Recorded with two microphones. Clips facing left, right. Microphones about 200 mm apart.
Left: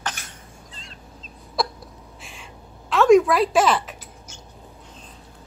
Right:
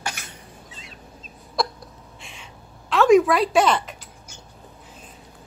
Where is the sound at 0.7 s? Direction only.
5° right (ahead or behind).